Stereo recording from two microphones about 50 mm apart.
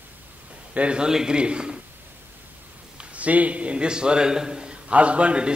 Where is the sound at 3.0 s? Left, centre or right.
Right.